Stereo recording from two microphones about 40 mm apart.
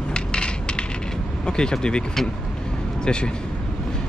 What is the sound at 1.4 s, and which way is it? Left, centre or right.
Vehicle, left.